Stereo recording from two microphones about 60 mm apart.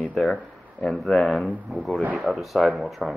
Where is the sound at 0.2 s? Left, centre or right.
Centre.